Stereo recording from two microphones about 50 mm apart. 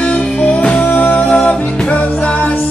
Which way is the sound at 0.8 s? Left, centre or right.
Left.